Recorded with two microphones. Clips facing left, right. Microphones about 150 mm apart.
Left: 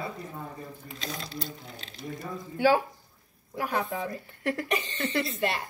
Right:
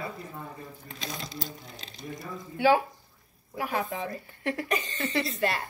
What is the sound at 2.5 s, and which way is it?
A woman's voice, 40° left (ahead or behind).